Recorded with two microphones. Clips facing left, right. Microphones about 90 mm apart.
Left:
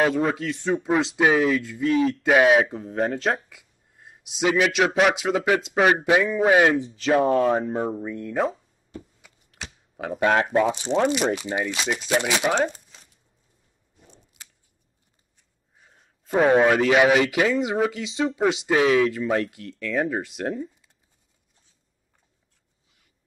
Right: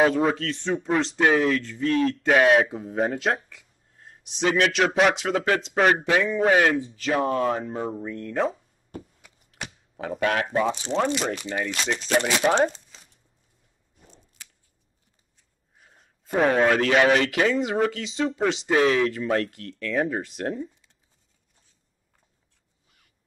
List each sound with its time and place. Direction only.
0.0 s speech: centre (ahead or behind)
6.8 s speech: 25° left (ahead or behind)
7.9 s speech: 10° left (ahead or behind)
10.2 s speech: 25° left (ahead or behind); by 13.0 s 5° left (ahead or behind)
15.8 s a sound: centre (ahead or behind)
16.4 s speech: 10° left (ahead or behind)